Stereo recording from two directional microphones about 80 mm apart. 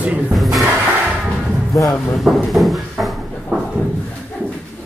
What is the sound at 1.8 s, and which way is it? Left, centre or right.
Speech, left.